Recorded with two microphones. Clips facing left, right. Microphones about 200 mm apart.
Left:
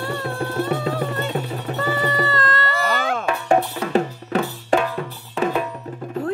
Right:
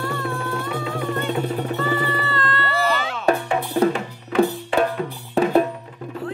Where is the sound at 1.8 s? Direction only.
45° left (ahead or behind).